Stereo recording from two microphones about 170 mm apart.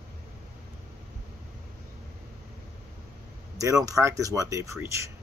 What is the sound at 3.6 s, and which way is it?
Speech, 20° right (ahead or behind).